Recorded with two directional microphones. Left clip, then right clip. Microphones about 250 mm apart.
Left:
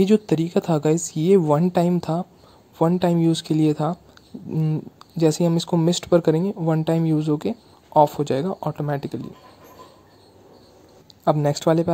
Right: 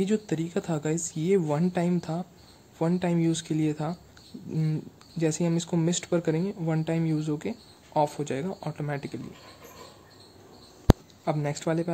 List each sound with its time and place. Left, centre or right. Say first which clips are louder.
0.0 s a woman's voice: left 9 dB; left
11.2 s a woman's voice: left 10 dB; left